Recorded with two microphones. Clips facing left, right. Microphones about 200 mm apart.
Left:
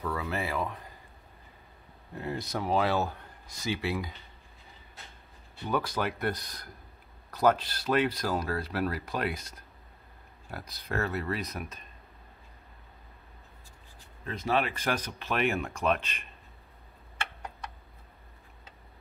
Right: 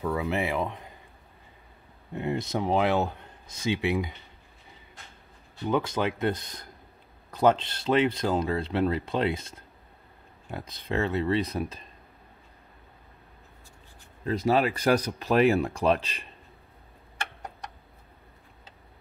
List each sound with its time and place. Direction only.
0.0 s speech: 20° right (ahead or behind)
2.1 s speech: 25° right (ahead or behind)
5.7 s speech: 20° right (ahead or behind)
14.2 s speech: 35° right (ahead or behind)